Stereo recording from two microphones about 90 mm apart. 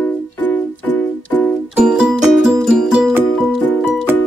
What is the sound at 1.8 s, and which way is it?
Music, 10° right (ahead or behind).